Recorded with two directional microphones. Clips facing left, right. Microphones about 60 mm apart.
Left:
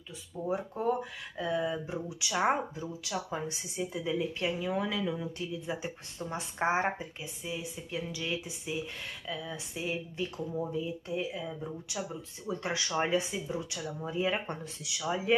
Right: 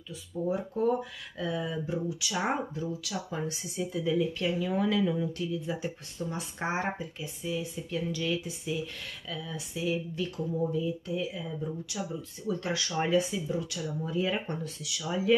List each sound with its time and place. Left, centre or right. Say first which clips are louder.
0.3 s speech: right 5 dB; centre
0.8 s speech: right 5 dB; left; by 5.3 s centre
5.7 s speech: right 2 dB; left
12.4 s speech: right 2 dB; left